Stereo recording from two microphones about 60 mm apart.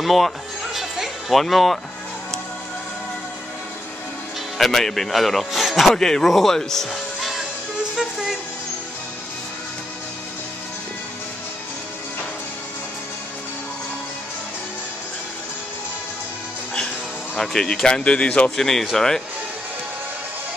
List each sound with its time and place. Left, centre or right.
0.0 s speech: centre
0.7 s music: centre
4.6 s a man's voice: centre
5.9 s speech: centre
17.4 s speech: centre
18.6 s speech: centre